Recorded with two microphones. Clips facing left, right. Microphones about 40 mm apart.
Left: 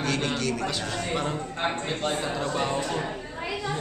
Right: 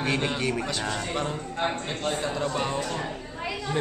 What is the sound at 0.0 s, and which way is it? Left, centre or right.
Speech, centre.